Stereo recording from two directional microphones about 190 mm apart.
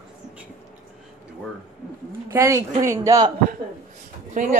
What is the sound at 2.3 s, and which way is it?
Speech, 15° right (ahead or behind).